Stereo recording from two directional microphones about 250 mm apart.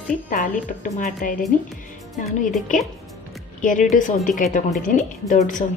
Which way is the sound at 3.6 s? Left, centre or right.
Left.